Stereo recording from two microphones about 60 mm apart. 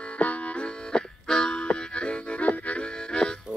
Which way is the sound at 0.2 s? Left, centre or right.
Left.